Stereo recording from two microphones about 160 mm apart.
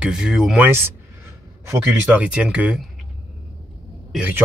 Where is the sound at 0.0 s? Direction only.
5° right (ahead or behind).